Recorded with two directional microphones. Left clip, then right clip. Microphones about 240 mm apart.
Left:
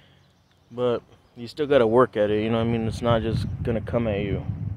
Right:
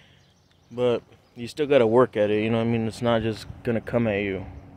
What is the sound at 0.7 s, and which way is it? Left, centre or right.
Speech, centre.